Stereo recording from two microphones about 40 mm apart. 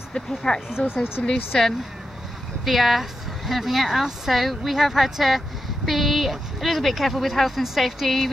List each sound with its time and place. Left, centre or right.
0.1 s speech: centre
1.2 s speech: centre
2.6 s a woman's voice: centre